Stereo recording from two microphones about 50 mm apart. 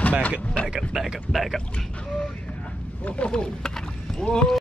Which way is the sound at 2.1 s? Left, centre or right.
Centre.